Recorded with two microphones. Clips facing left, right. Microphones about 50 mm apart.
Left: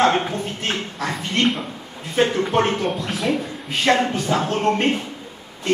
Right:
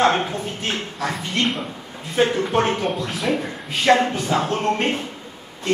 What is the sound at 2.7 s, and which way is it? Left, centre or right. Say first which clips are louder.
Speech: even; centre.